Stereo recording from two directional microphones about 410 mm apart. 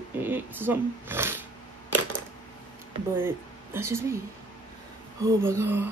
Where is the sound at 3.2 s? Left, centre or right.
Centre.